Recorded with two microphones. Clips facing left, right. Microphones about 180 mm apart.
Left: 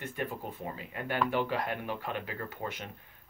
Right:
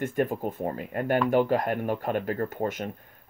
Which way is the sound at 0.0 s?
45° right (ahead or behind).